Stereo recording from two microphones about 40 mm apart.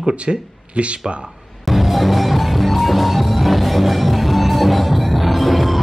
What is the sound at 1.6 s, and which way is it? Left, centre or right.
Music, centre.